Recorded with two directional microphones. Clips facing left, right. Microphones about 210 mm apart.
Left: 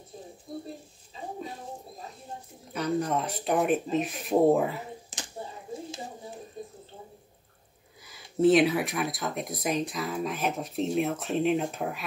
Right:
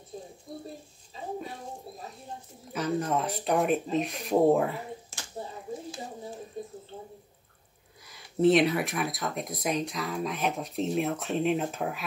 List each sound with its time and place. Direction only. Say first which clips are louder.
2.7 s speech: left 1 dB; centre (ahead or behind)
5.1 s a sound: left 3 dB; 15° left (ahead or behind)
8.0 s speech: left 1 dB; centre (ahead or behind)